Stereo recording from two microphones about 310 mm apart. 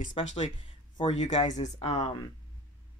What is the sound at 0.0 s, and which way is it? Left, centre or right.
Speech, left.